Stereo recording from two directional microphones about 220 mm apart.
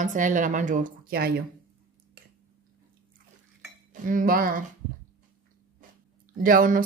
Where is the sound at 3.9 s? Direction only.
35° right (ahead or behind).